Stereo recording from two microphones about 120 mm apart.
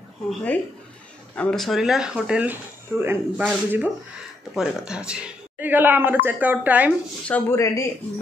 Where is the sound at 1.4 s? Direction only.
5° left (ahead or behind); by 6.9 s 15° right (ahead or behind).